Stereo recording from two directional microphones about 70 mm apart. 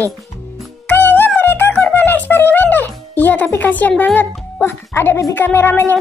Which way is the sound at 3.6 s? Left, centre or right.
Left.